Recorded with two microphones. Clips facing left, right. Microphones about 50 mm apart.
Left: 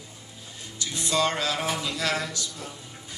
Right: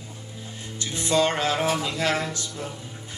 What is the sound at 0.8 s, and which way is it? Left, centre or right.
Music, right.